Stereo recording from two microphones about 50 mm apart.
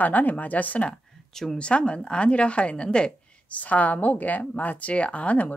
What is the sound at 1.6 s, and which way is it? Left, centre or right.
A woman's voice, left.